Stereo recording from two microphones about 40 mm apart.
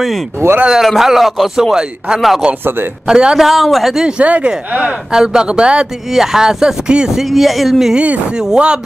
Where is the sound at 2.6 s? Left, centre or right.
Right.